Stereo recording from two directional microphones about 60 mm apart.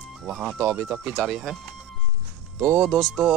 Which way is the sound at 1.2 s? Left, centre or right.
Centre.